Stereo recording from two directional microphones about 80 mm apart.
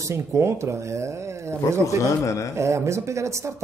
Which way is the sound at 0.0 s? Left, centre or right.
Right.